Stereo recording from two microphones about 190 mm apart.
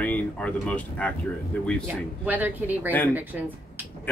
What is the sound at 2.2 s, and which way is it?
A woman's voice, 10° right (ahead or behind).